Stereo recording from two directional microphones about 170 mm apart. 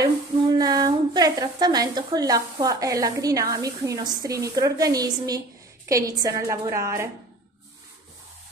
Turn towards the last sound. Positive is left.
turn(degrees=-15)  # may be behind; listen again after turning